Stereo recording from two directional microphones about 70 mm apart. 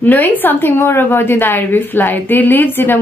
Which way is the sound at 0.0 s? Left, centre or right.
Left.